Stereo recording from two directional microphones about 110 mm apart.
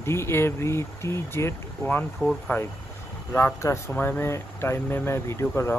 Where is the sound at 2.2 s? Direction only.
5° right (ahead or behind).